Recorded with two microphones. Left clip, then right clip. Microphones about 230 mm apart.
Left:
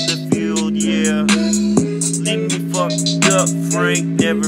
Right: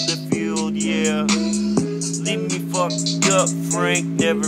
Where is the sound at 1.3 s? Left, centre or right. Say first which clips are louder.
Left 4 dB; left.